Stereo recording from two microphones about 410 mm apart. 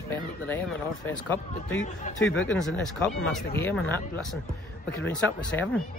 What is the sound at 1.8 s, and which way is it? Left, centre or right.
Speech, left.